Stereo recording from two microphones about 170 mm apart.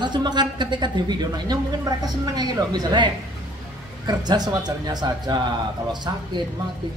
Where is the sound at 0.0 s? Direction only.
25° right (ahead or behind).